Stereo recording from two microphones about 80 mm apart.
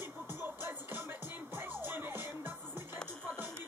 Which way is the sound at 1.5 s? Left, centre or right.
Right.